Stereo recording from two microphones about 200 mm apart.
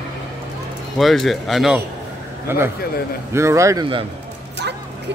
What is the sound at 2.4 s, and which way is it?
A man's voice, 10° right (ahead or behind).